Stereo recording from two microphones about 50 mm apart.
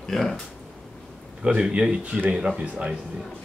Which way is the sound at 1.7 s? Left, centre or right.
Centre.